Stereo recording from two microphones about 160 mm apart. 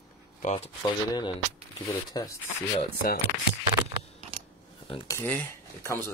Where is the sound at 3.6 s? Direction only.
30° right (ahead or behind).